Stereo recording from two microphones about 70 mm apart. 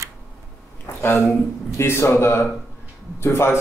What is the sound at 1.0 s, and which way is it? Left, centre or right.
Speech, left.